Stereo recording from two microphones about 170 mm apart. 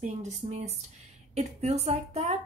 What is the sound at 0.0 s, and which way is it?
Speech, 40° right (ahead or behind).